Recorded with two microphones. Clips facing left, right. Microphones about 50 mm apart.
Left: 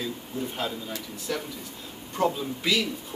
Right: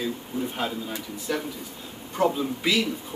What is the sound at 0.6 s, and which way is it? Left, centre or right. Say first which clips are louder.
Speech: right 2 dB; centre.